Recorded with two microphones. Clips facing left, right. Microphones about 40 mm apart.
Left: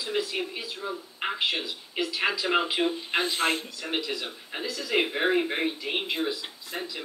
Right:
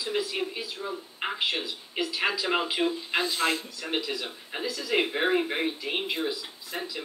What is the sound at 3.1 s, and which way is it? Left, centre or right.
Speech, left.